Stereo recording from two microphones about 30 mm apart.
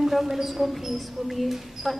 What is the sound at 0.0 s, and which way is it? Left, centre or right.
A man's voice, centre.